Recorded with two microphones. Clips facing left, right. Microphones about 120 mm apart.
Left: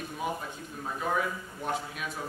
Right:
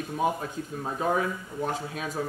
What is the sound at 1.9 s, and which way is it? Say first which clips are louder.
Speech: right 5 dB; 35° right (ahead or behind).